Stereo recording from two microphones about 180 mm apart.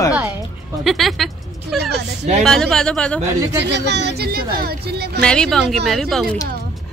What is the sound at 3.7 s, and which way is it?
Speech, 70° right (ahead or behind).